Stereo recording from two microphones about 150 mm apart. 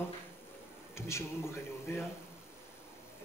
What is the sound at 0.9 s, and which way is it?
A man's voice, 20° left (ahead or behind).